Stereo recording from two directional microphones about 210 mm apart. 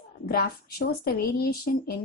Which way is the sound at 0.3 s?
50° left (ahead or behind).